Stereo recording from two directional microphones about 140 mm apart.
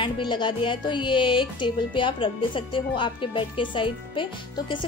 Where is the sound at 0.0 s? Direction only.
35° left (ahead or behind).